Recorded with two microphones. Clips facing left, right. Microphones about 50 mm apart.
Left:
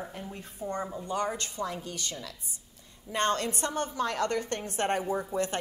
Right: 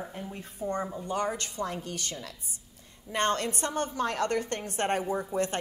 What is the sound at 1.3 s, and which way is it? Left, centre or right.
A woman's voice, right.